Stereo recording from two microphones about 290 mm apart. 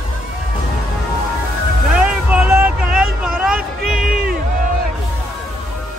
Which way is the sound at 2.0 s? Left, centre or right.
Centre.